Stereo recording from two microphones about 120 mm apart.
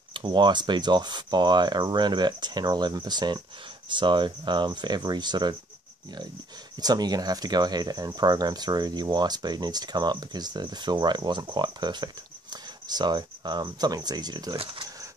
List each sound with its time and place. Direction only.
0.1 s speech: 40° right (ahead or behind)
6.8 s speech: 35° right (ahead or behind)